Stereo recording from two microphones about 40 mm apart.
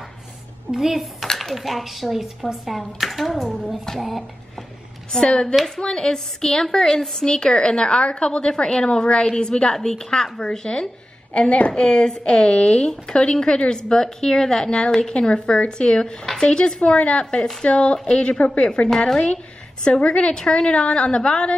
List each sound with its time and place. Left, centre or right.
0.7 s speech: centre
1.2 s speech: centre
5.2 s a woman's voice: left
7.2 s a woman's voice: left
11.3 s a woman's voice: left
11.7 s a woman's voice: left
18.8 s a woman's voice: left
19.1 s a woman's voice: centre